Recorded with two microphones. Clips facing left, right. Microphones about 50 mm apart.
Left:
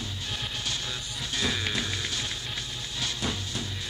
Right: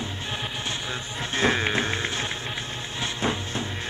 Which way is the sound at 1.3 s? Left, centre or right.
Right.